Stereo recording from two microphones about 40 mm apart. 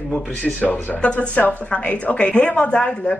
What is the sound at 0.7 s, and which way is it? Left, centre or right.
A woman's voice, left.